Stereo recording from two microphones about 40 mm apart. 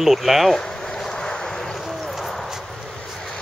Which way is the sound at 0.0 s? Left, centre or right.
Centre.